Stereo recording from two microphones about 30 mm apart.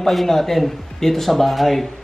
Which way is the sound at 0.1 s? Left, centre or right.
Centre.